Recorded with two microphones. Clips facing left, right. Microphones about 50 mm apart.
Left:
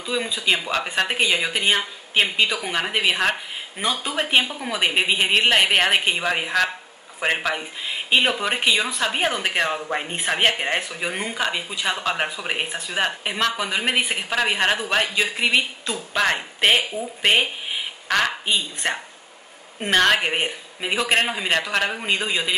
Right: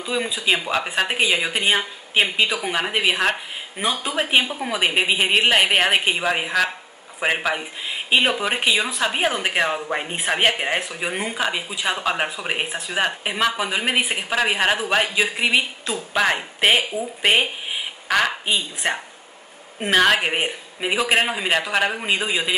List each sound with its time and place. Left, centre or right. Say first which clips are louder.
0.0 s speech: right 1 dB; centre